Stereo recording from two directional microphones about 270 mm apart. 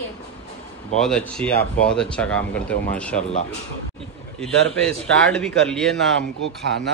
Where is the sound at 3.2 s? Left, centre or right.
Left.